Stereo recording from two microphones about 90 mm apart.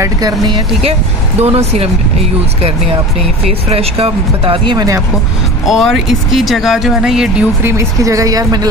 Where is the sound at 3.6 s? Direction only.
90° right.